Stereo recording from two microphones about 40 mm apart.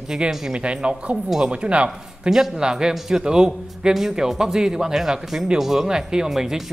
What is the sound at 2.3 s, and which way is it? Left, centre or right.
A man's voice, centre.